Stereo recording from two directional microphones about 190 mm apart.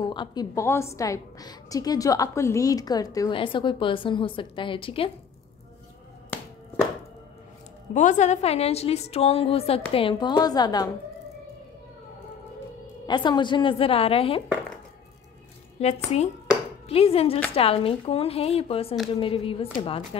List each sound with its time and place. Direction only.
0.0 s a woman's voice: 25° left (ahead or behind)
6.3 s music: 10° left (ahead or behind)
7.9 s a woman's voice: 40° left (ahead or behind); by 10.9 s 20° left (ahead or behind)
13.0 s a woman's voice: 25° left (ahead or behind)
15.8 s a woman's voice: 35° left (ahead or behind)